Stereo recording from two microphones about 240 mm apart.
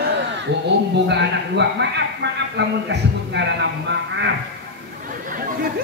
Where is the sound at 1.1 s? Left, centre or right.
Right.